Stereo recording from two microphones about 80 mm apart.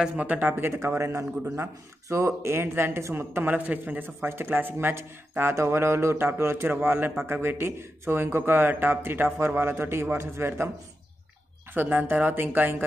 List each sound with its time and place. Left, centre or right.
0.2 s speech: centre
0.8 s a man's voice: right
11.7 s speech: right